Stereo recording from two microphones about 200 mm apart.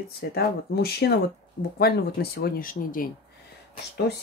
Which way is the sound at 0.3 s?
50° left (ahead or behind).